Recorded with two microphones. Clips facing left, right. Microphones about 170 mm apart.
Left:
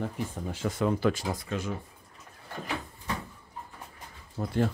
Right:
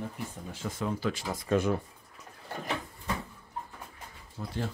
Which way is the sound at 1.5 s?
55° right (ahead or behind).